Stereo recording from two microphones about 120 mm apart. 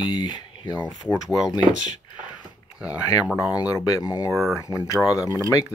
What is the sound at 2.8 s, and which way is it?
Speech, 10° right (ahead or behind).